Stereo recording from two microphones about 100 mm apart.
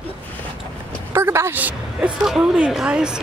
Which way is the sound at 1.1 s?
25° right (ahead or behind).